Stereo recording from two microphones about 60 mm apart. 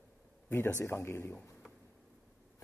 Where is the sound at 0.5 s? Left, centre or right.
Left.